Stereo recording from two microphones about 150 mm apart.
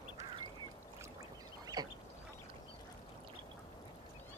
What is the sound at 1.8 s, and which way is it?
Duck, 25° right (ahead or behind).